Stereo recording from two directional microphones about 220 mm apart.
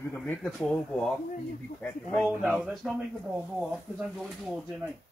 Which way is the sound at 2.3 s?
Centre (ahead or behind).